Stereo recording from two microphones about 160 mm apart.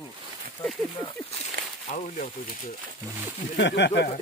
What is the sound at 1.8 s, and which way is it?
Speech, 50° left (ahead or behind).